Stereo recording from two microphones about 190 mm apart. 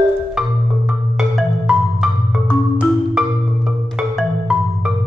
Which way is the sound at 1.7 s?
5° right (ahead or behind).